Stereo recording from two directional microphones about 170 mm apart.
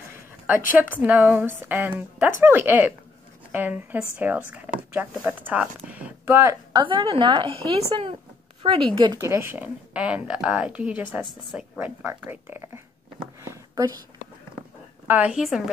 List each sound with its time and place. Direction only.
1.0 s a woman's voice: 10° right (ahead or behind)
6.8 s a woman's voice: 30° right (ahead or behind); by 11.9 s centre (ahead or behind)
12.0 s a woman's voice: 15° right (ahead or behind)
13.4 s a sound: 20° right (ahead or behind)
15.0 s a woman's voice: 10° right (ahead or behind)